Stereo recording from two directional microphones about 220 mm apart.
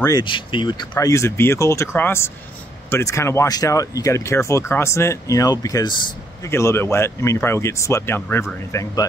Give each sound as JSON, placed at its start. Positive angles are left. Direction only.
{"t": 0.0, "sound": "speech", "side_deg": 20}